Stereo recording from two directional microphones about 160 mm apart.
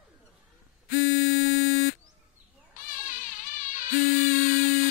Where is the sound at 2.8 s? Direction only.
55° left (ahead or behind).